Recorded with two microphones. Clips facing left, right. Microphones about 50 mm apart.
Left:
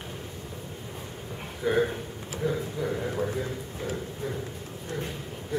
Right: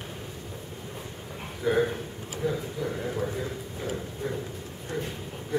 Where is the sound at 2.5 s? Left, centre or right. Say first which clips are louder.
Left 1 dB; centre.